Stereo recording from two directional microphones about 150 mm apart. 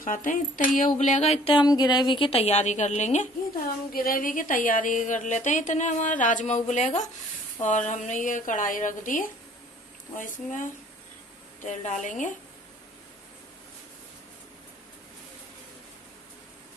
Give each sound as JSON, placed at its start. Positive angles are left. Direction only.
{"t": 0.0, "sound": "speech", "side_deg": 65}
{"t": 3.9, "sound": "a woman's voice", "side_deg": 75}